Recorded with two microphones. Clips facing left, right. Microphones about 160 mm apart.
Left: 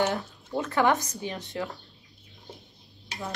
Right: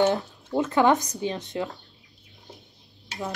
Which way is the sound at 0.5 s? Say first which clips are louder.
Right 4 dB; 20° right (ahead or behind).